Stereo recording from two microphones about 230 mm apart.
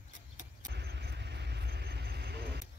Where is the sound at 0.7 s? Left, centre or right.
Right.